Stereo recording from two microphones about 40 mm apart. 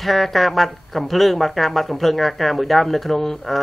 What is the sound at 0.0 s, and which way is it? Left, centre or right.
A man's voice, centre.